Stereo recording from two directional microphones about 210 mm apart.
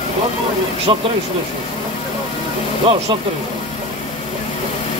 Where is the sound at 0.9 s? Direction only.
25° right (ahead or behind).